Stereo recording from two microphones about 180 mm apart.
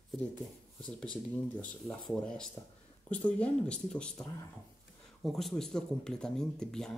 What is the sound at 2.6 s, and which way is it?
Speech, 15° left (ahead or behind).